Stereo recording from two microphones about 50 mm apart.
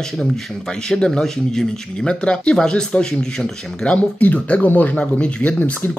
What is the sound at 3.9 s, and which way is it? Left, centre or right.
Speech, left.